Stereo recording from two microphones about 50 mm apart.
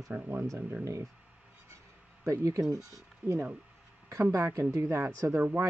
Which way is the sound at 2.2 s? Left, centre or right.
Right.